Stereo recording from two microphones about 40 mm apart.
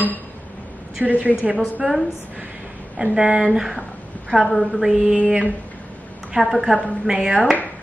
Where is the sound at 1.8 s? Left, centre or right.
Centre.